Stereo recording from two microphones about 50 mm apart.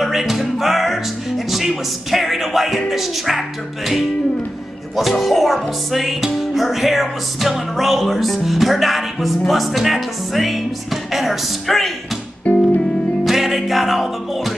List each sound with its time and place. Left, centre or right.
0.0 s music: centre
5.2 s music: centre
12.5 s music: left
13.2 s music: centre